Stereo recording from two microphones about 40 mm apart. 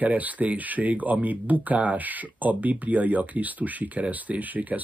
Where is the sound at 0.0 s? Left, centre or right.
Right.